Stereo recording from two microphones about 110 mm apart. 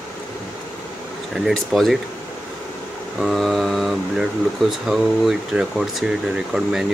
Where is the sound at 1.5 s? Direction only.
Centre (ahead or behind).